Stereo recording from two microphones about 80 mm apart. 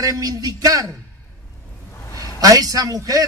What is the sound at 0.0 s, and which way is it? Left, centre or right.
Speech, right.